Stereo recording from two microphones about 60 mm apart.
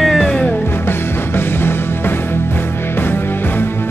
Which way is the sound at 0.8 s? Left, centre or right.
Left.